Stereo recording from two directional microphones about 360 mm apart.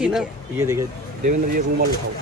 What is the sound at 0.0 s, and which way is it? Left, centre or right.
Speech, centre.